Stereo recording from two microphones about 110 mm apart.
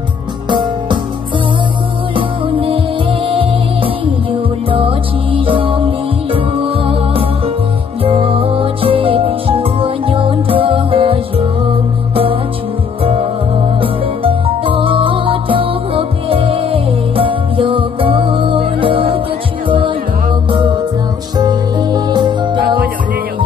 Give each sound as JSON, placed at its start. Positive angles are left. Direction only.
{"t": 0.5, "sound": "music", "side_deg": -45}
{"t": 2.1, "sound": "music", "side_deg": -55}
{"t": 20.5, "sound": "music", "side_deg": -45}